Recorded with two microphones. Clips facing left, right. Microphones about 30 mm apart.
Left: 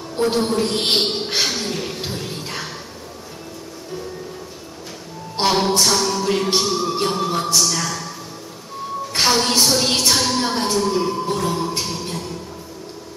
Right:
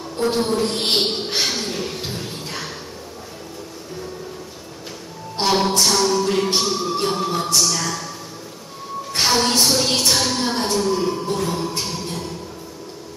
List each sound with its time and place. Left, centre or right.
0.2 s music: centre
1.4 s a sound: centre
2.2 s music: centre
5.5 s music: centre
7.6 s speech: centre
9.3 s music: centre
10.8 s music: centre